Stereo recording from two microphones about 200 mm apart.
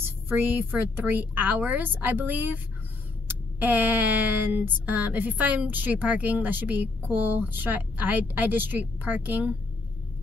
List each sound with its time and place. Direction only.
0.0 s speech: 10° right (ahead or behind)